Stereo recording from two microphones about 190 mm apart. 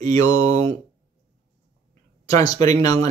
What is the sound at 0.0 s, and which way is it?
Mantra, 20° left (ahead or behind).